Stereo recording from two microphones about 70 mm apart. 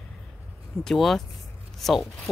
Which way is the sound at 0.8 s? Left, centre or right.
Centre.